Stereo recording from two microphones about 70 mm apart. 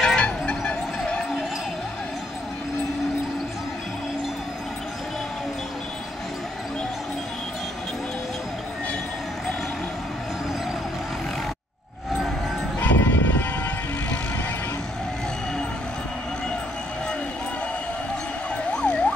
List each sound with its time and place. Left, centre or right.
0.0 s music: centre
12.8 s music: left
18.7 s emergency vehicle: centre